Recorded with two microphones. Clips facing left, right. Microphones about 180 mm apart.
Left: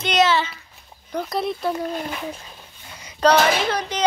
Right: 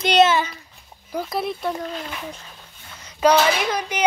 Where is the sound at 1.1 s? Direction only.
5° right (ahead or behind).